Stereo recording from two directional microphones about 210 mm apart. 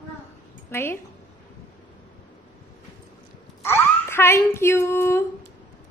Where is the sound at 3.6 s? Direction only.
10° left (ahead or behind).